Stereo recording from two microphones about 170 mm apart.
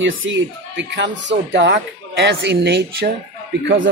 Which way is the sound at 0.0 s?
90° right.